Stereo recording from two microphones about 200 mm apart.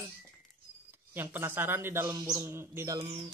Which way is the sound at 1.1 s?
10° right (ahead or behind).